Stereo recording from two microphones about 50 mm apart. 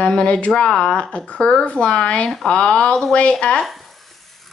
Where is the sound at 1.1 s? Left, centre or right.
Left.